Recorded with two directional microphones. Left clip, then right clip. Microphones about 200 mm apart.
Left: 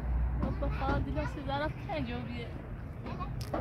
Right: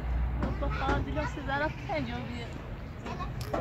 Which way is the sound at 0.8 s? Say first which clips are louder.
Right 4 dB; 40° left (ahead or behind).